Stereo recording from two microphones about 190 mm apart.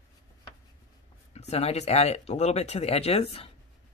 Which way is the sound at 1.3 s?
35° left (ahead or behind).